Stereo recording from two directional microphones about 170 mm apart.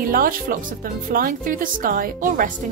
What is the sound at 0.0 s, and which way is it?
A woman's voice, 55° right (ahead or behind).